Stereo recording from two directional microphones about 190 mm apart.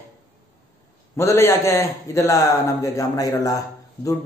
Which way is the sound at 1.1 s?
15° left (ahead or behind).